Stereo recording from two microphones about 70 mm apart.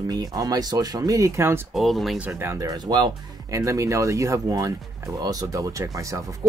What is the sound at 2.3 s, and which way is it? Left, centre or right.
Speech, right.